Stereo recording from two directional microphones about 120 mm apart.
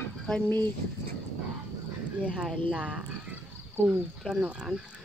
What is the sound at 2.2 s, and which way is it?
Speech, 10° right (ahead or behind).